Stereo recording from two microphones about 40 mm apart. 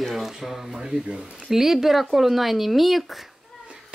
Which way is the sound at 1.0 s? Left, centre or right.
Right.